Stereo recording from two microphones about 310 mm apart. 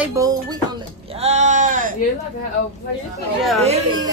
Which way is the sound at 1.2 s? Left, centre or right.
Right.